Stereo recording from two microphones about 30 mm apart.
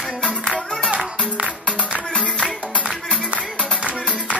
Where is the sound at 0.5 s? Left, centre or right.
Right.